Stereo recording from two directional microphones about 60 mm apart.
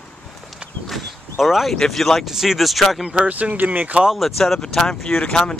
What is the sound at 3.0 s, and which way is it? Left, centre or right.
Speech, right.